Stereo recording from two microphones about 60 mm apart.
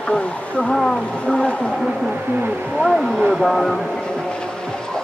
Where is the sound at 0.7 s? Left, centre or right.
Centre.